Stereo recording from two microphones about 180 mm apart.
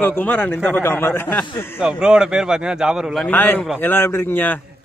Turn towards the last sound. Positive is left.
turn(degrees=10)  # may be behind; listen again after turning